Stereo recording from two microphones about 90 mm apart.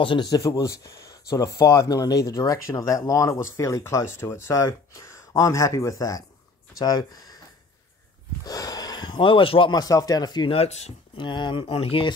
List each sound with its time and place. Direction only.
0.0 s speech: 65° left (ahead or behind)
0.3 s speech: 40° left (ahead or behind)
8.5 s a sound: 45° left (ahead or behind); by 9.7 s 75° left (ahead or behind)
9.7 s speech: 45° left (ahead or behind); by 12.1 s 90° left